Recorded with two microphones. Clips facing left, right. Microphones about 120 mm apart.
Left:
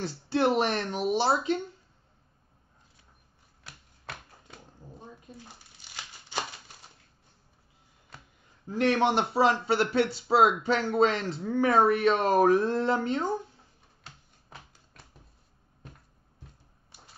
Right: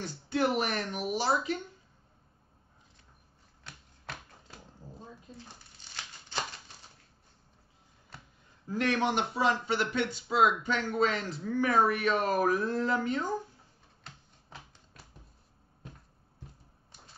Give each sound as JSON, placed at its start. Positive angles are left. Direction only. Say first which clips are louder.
{"t": 0.0, "sound": "speech", "louder": "left 4 dB", "side_deg": 30}
{"t": 3.6, "sound": "typewriter", "louder": "left 1 dB", "side_deg": 5}
{"t": 8.6, "sound": "speech", "louder": "left 4 dB", "side_deg": 25}
{"t": 14.0, "sound": "typewriter", "louder": "even", "side_deg": 0}